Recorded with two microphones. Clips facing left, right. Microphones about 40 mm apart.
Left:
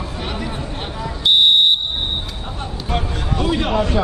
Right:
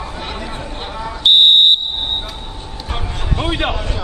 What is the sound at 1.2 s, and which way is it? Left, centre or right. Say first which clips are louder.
Fire alarm: right 3 dB; right.